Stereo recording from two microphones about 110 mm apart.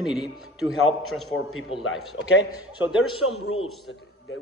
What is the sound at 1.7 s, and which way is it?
Speech, 55° left (ahead or behind).